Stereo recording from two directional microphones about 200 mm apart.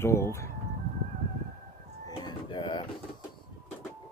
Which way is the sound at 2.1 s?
25° left (ahead or behind).